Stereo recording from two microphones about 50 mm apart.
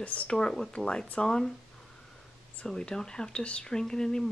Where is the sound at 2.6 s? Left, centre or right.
Centre.